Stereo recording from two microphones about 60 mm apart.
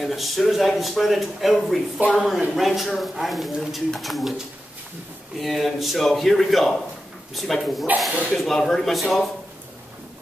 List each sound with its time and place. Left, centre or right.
0.0 s speech: centre
2.0 s speech: right
2.5 s speech: centre
5.4 s speech: centre